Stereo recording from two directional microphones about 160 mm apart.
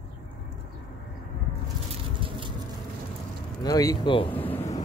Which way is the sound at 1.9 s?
35° right (ahead or behind).